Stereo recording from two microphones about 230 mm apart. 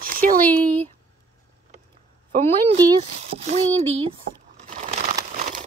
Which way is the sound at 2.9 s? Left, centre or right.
Right.